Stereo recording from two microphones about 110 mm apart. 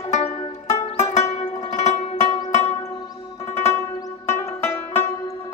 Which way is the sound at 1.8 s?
90° left.